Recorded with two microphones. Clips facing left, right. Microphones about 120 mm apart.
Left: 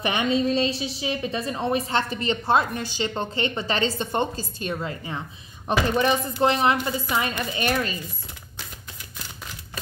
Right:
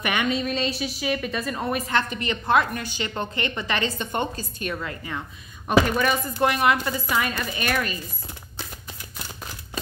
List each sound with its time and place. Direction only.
0.0 s a woman's voice: 30° left (ahead or behind)